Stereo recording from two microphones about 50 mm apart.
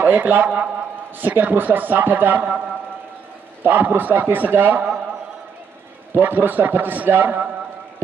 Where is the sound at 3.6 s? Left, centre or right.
Right.